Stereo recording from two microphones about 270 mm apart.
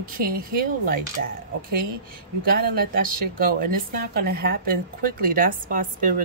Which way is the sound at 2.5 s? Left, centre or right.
Right.